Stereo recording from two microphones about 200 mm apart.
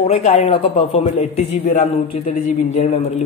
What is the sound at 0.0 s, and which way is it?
A man's voice, 30° left (ahead or behind).